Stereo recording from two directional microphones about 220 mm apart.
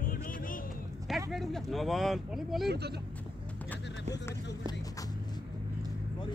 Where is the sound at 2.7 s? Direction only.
45° right (ahead or behind).